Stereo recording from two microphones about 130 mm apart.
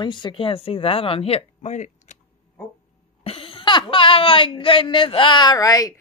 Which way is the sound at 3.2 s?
45° left (ahead or behind).